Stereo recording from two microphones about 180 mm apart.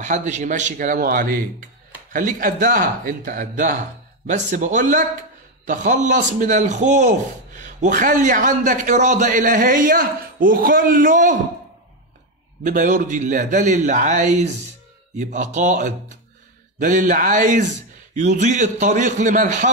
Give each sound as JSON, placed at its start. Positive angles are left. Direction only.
{"t": 0.0, "sound": "a man's voice", "side_deg": -40}
{"t": 12.6, "sound": "a man's voice", "side_deg": -45}